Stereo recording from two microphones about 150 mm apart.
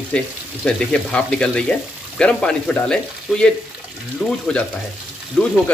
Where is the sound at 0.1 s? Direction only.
5° left (ahead or behind).